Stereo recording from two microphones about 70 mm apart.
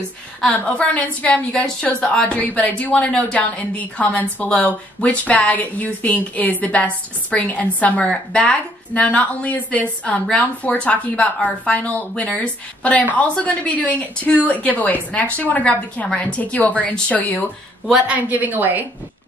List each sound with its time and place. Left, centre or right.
0.5 s a woman's voice: centre
18.0 s a woman's voice: right